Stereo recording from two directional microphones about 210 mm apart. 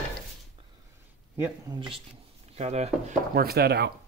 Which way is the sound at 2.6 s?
30° right (ahead or behind).